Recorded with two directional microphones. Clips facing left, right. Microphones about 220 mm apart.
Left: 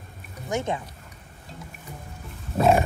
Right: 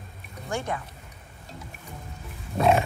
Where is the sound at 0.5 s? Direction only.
20° left (ahead or behind).